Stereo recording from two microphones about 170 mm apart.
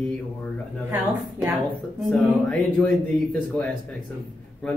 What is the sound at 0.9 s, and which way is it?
Speech, 10° right (ahead or behind).